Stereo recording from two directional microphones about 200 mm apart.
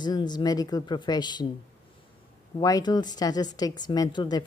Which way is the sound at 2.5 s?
20° left (ahead or behind).